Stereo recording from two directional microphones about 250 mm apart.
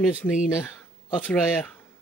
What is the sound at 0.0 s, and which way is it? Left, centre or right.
Speech, centre.